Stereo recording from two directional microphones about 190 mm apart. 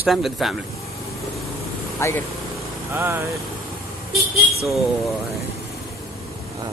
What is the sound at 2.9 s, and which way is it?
Speech, 10° right (ahead or behind).